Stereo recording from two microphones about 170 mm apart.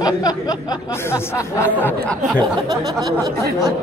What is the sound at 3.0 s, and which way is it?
Speech, 20° right (ahead or behind).